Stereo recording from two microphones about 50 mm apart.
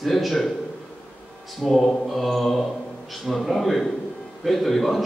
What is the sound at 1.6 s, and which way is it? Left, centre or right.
Speech, centre.